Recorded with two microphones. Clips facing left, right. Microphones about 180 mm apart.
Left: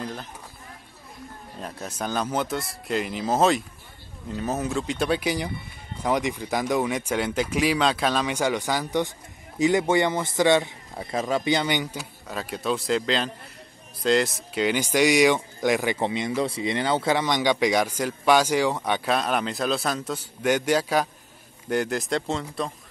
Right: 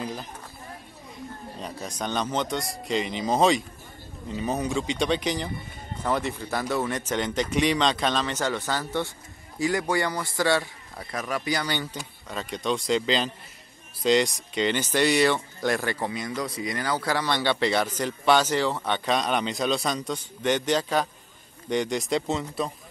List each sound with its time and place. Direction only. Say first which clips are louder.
0.0 s a sound: even; 5° right (ahead or behind)
1.6 s a man's voice: left 1 dB; centre (ahead or behind)
12.0 s speech: left 1 dB; 5° left (ahead or behind)